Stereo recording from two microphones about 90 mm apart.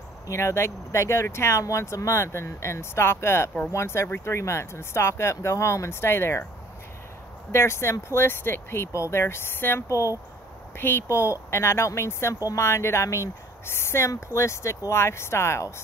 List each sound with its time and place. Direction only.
0.3 s speech: 30° left (ahead or behind)
7.5 s speech: 30° left (ahead or behind)